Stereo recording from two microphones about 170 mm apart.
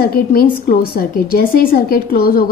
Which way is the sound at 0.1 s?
60° left (ahead or behind).